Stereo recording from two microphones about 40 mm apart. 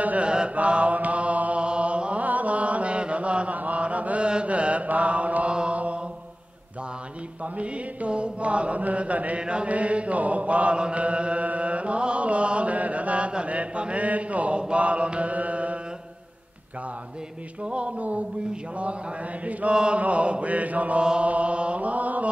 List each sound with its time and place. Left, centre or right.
0.2 s mantra: right
1.6 s chant: right
2.2 s mantra: right
5.5 s mantra: right
7.5 s mantra: right
9.4 s chant: right
14.6 s mantra: right
17.6 s mantra: right
19.7 s mantra: right
21.0 s mantra: right
21.3 s chant: right